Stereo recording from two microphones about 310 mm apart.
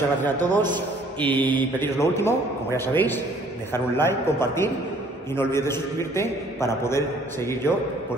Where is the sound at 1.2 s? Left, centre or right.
Centre.